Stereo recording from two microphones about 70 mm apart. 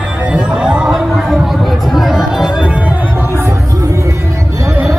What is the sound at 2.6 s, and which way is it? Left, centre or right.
Music, centre.